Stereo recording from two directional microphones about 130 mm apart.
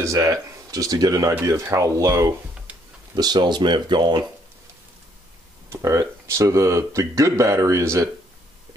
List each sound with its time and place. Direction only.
0.0 s speech: 25° right (ahead or behind)
5.7 s speech: 25° right (ahead or behind)